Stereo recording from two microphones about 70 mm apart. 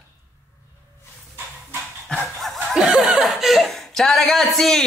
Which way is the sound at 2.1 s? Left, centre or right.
Centre.